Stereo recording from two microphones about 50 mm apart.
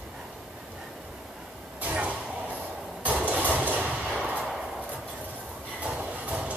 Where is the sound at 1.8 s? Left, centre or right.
Right.